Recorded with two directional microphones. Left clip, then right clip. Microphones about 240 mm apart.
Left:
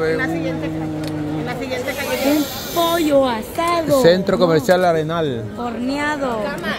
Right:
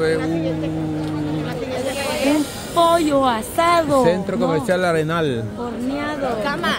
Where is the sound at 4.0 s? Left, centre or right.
Centre.